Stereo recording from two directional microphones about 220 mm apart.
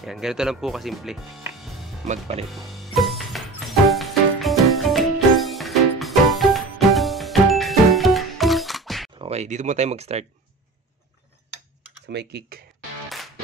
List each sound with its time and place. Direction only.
0.0 s speech: centre (ahead or behind)
2.0 s speech: 30° right (ahead or behind)
2.5 s music: centre (ahead or behind)
9.2 s speech: 30° right (ahead or behind)
12.1 s speech: 50° right (ahead or behind)